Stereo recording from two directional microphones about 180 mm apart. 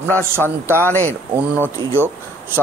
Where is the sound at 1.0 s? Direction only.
10° right (ahead or behind).